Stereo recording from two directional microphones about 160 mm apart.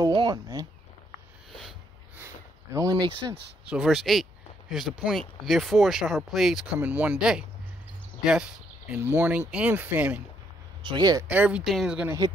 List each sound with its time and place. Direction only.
0.0 s a sound: 30° right (ahead or behind)
2.7 s speech: 20° right (ahead or behind)
3.6 s speech: 5° right (ahead or behind)
10.8 s speech: 30° right (ahead or behind)
11.2 s speech: 10° right (ahead or behind)